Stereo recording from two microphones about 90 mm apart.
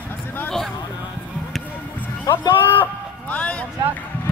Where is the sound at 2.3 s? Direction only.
65° left (ahead or behind).